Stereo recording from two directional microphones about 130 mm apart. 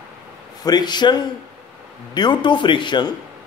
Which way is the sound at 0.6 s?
35° left (ahead or behind).